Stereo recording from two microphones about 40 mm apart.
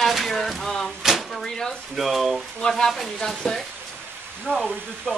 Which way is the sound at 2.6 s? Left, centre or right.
Centre.